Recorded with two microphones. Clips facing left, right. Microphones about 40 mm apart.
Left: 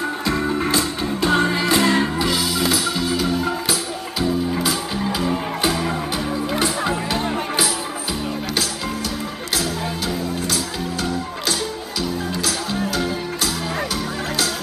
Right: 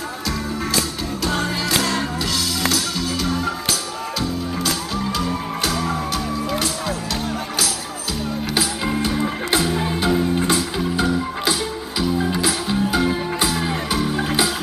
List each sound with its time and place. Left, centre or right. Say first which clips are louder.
0.3 s music: left 4 dB; left
9.0 s music: right 5 dB; right